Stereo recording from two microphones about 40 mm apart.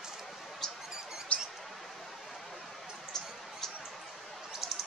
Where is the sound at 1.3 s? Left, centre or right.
Left.